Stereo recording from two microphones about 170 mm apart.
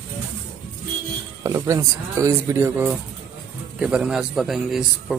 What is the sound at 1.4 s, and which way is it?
A man's voice, 15° right (ahead or behind).